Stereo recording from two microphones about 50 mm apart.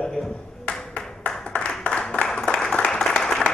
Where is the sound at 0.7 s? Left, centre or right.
Left.